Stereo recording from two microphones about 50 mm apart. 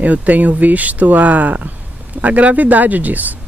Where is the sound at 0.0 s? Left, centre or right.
Right.